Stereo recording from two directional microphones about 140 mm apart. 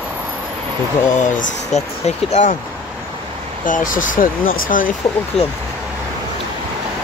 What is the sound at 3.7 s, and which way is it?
Speech, 70° left (ahead or behind).